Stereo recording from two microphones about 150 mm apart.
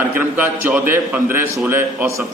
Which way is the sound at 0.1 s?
15° right (ahead or behind).